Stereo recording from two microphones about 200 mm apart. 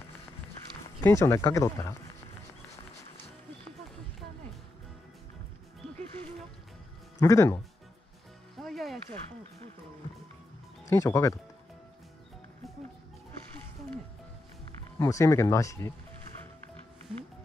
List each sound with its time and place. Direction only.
1.0 s speech: 15° left (ahead or behind)
7.2 s speech: 15° left (ahead or behind)
8.5 s music: centre (ahead or behind)
10.9 s speech: 15° left (ahead or behind)
15.0 s speech: 15° left (ahead or behind)